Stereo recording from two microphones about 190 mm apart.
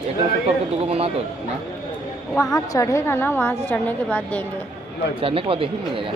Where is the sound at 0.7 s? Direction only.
30° right (ahead or behind).